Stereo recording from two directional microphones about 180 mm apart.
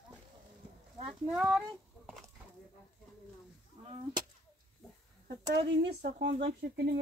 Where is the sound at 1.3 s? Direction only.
5° right (ahead or behind).